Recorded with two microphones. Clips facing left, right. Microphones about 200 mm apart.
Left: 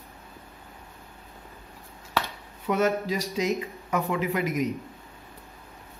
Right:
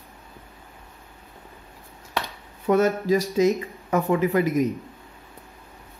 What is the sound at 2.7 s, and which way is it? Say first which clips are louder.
Speech: right 5 dB; 45° right (ahead or behind).